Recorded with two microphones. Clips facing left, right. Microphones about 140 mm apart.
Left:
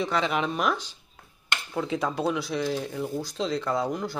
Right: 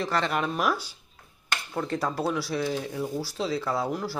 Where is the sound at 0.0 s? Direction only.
Centre (ahead or behind).